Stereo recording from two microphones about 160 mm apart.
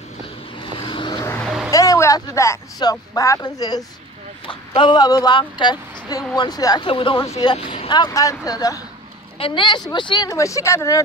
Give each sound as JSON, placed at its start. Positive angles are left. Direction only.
{"t": 0.6, "sound": "vehicle", "side_deg": 30}
{"t": 1.4, "sound": "a sound", "side_deg": 0}
{"t": 1.7, "sound": "a woman's voice", "side_deg": 20}